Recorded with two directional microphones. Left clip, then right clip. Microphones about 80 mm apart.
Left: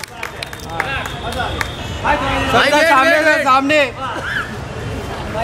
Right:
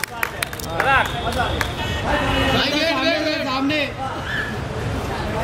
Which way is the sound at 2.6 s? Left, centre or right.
Left.